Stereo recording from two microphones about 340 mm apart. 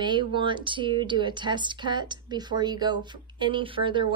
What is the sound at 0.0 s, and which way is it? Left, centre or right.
Speech, centre.